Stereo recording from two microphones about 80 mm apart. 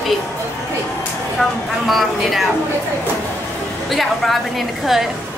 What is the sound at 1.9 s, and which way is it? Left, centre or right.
Speech, centre.